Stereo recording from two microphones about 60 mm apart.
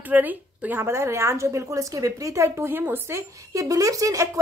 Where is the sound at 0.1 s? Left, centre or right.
Right.